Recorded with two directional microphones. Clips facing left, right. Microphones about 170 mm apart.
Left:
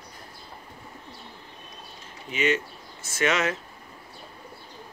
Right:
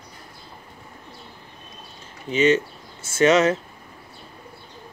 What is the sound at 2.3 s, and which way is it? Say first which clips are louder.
Speech: right 7 dB; 30° right (ahead or behind).